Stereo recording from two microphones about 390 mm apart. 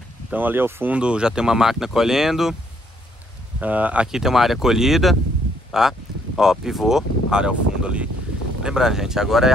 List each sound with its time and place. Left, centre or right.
0.3 s speech: centre
3.5 s speech: centre